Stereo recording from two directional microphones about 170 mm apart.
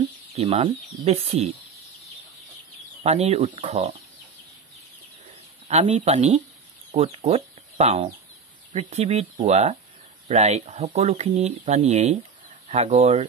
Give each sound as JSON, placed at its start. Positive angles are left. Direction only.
{"t": 0.4, "sound": "speech", "side_deg": -40}
{"t": 3.0, "sound": "speech", "side_deg": -40}
{"t": 5.7, "sound": "speech", "side_deg": -40}